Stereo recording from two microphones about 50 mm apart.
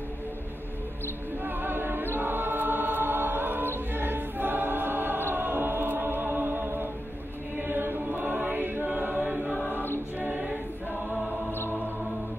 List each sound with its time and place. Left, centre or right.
1.4 s choir: right
10.1 s a capella: right